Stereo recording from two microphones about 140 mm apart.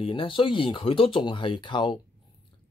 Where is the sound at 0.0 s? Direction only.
40° left (ahead or behind).